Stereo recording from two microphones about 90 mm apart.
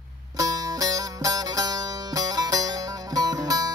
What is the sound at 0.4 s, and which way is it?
Music, 45° right (ahead or behind).